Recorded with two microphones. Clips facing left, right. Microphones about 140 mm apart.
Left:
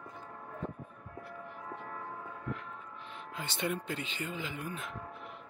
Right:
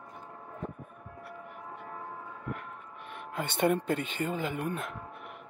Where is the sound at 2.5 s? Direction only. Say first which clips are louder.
Right 1 dB; 60° right (ahead or behind).